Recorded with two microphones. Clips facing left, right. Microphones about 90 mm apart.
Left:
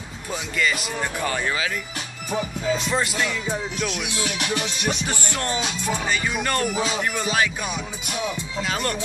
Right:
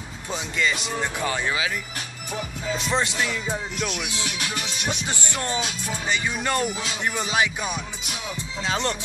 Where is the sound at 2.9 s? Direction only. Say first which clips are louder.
Even; 25° right (ahead or behind).